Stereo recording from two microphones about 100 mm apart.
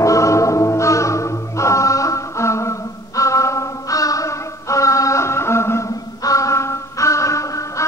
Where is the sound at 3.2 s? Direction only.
30° left (ahead or behind).